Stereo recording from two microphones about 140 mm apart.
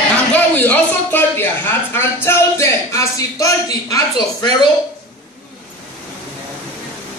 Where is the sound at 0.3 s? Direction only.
10° left (ahead or behind); by 4.6 s 30° left (ahead or behind).